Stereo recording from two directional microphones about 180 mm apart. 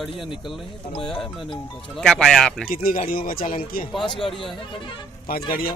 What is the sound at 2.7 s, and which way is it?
Speech, 50° left (ahead or behind).